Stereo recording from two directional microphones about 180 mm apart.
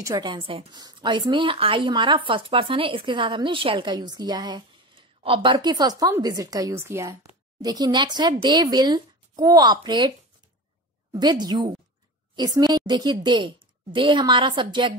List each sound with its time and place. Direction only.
0.0 s a woman's voice: 20° right (ahead or behind)